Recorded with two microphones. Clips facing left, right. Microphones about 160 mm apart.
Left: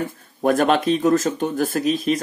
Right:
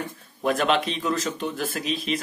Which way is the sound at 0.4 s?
45° left (ahead or behind).